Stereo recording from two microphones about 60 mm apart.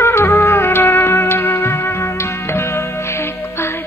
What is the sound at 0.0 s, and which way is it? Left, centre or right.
Music, left.